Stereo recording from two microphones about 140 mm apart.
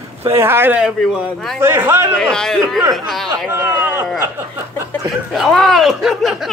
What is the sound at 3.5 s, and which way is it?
Speech, 15° right (ahead or behind).